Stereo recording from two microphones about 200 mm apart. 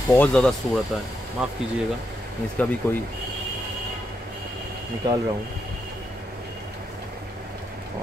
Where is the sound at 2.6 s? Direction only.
5° left (ahead or behind).